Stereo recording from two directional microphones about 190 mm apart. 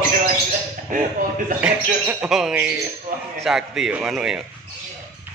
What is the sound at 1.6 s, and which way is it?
Speech, 5° right (ahead or behind).